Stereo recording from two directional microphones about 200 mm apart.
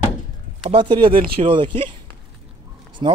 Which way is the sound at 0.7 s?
25° right (ahead or behind).